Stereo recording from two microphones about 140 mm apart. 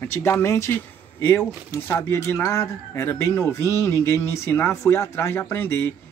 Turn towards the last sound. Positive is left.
turn(degrees=15)  # may be behind; listen again after turning